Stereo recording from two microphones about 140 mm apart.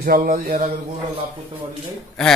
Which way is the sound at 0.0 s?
85° right.